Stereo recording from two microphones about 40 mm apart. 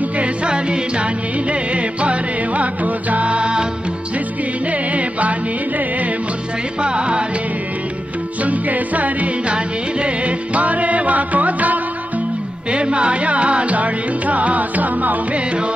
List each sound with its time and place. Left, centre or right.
0.2 s music: right
4.6 s music: right
6.8 s music: right
8.4 s music: right
12.7 s music: right